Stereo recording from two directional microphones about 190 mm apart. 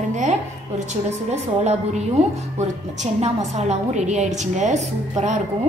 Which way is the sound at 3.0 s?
35° right (ahead or behind).